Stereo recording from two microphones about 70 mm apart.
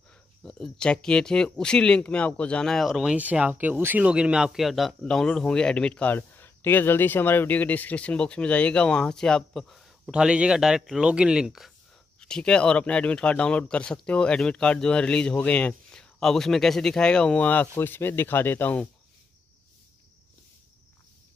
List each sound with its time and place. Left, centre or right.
0.4 s speech: centre
2.9 s speech: centre
3.2 s speech: right
4.0 s speech: centre
5.0 s speech: centre
6.1 s speech: left; by 10.1 s centre
10.1 s speech: centre
12.2 s speech: centre
17.5 s speech: left